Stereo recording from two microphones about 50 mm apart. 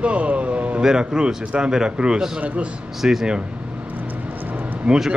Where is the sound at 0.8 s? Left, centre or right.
Centre.